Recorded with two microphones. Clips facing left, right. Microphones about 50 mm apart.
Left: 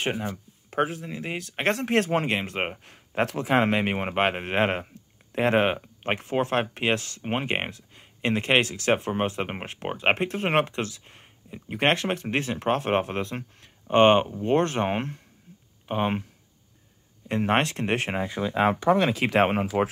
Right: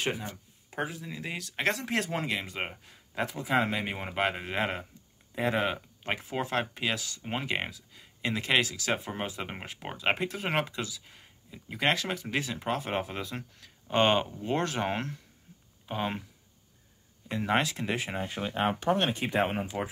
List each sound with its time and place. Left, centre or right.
0.2 s speech: left
1.8 s speech: left
17.3 s speech: left
19.1 s speech: left